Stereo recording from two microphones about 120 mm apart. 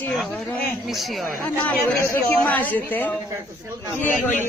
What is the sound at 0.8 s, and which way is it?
Speech, centre (ahead or behind).